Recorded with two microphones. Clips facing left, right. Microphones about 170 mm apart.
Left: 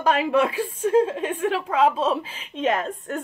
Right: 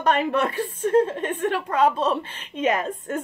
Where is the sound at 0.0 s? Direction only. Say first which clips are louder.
Left 1 dB; 5° left (ahead or behind).